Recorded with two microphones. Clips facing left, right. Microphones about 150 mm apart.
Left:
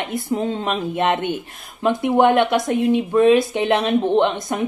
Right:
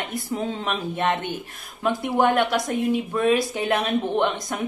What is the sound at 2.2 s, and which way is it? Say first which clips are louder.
Speech: left 4 dB; 25° left (ahead or behind).